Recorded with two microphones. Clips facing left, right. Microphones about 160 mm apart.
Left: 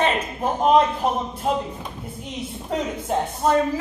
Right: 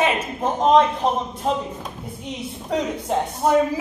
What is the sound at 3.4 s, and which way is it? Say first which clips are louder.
Speech: right 2 dB; 10° right (ahead or behind).